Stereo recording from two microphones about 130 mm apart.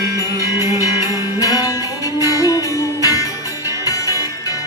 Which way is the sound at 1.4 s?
25° left (ahead or behind).